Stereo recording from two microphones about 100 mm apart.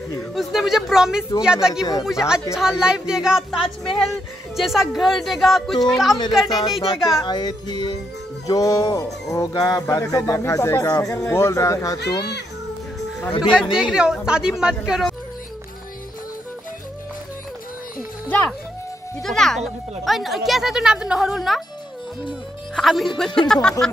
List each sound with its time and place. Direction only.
0.3 s speech: centre (ahead or behind)
7.2 s music: 45° left (ahead or behind)
8.5 s speech: 35° left (ahead or behind)
13.3 s speech: 55° left (ahead or behind)
13.7 s speech: 10° right (ahead or behind)
19.2 s speech: 5° left (ahead or behind)
22.8 s speech: centre (ahead or behind)